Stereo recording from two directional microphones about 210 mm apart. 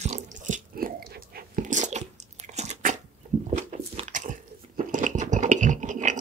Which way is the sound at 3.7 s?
35° right (ahead or behind).